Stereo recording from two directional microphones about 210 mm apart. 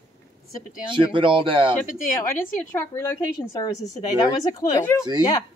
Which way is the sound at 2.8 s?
15° left (ahead or behind).